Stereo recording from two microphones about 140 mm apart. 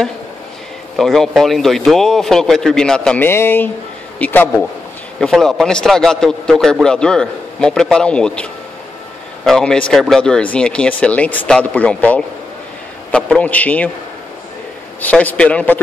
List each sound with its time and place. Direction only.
0.9 s a man's voice: centre (ahead or behind)
3.3 s a man's voice: 15° left (ahead or behind)
15.0 s speech: 10° left (ahead or behind)